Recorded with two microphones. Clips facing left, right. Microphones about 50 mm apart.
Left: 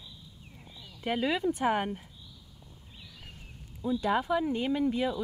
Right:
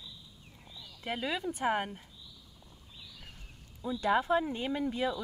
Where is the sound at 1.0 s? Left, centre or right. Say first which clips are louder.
Left 6 dB; centre.